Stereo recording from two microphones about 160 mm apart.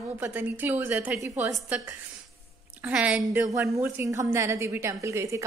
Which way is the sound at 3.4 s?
20° right (ahead or behind).